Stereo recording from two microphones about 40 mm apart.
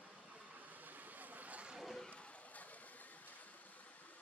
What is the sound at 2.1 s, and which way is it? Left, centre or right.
Vehicle, left.